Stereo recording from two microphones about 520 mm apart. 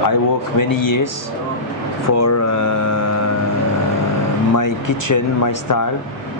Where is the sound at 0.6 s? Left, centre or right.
Left.